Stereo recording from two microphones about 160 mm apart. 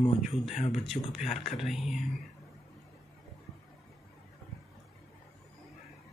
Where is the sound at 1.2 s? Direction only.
45° left (ahead or behind).